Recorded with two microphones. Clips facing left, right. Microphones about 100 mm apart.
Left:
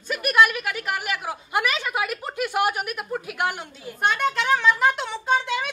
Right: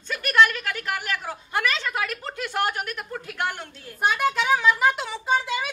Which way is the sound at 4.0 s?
5° right (ahead or behind).